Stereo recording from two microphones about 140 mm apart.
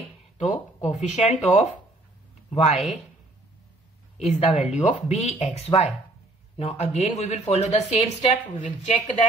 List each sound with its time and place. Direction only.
0.4 s speech: 55° left (ahead or behind)
4.3 s speech: 55° left (ahead or behind)